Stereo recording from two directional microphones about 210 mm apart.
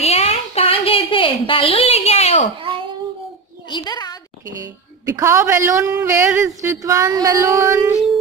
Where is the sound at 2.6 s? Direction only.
25° right (ahead or behind).